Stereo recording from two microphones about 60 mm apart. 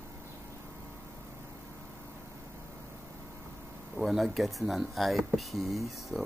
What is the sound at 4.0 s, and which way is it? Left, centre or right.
Speech, centre.